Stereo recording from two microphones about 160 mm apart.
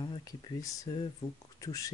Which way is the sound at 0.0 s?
25° left (ahead or behind).